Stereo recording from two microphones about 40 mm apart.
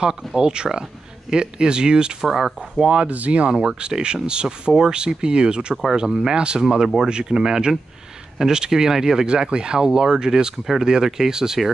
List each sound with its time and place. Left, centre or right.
0.4 s speech: right
2.2 s speech: centre
2.8 s speech: right
3.6 s speech: right